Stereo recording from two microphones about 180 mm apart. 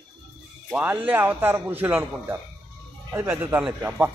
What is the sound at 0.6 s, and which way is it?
A man's voice, 10° right (ahead or behind).